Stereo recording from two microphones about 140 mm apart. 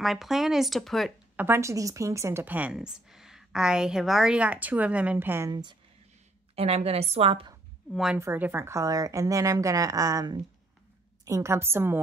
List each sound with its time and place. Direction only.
0.0 s speech: centre (ahead or behind)
1.3 s a woman's voice: 15° right (ahead or behind)
5.5 s speech: 30° right (ahead or behind)
6.5 s a woman's voice: 45° right (ahead or behind)
7.9 s speech: 5° right (ahead or behind)
8.2 s a woman's voice: 15° right (ahead or behind)